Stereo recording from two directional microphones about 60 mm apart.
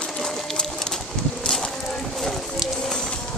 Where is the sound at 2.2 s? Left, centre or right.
Centre.